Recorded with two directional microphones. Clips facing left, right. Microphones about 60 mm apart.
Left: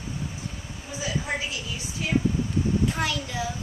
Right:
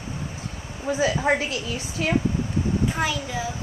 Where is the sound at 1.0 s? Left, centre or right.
Right.